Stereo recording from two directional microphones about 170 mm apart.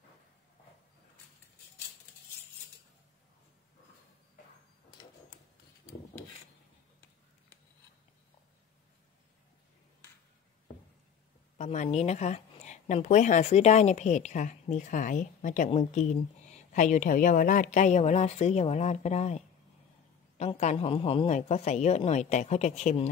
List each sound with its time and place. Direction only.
11.5 s a woman's voice: 45° left (ahead or behind)
21.4 s speech: 40° left (ahead or behind)